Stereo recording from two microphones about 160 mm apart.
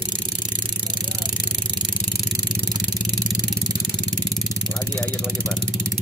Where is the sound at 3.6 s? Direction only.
25° right (ahead or behind).